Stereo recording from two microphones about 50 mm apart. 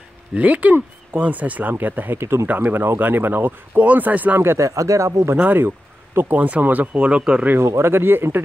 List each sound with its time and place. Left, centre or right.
0.3 s speech: right
2.1 s speech: right
2.4 s speech: right
3.8 s speech: right
4.4 s speech: right
6.3 s speech: right
7.0 s speech: right
7.6 s speech: right